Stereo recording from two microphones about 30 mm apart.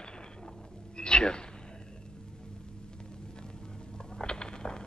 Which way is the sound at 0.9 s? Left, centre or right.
Left.